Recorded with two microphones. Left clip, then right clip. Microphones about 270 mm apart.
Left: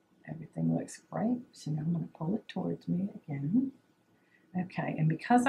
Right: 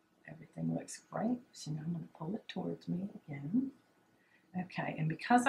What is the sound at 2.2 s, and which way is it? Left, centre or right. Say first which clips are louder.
Speech: left 6 dB; right.